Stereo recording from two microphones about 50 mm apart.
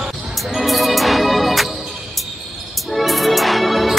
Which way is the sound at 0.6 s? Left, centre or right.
Centre.